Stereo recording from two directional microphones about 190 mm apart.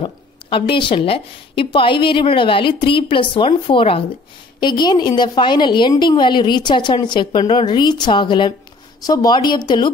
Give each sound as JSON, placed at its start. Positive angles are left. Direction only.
{"t": 0.0, "sound": "a woman's voice", "side_deg": 25}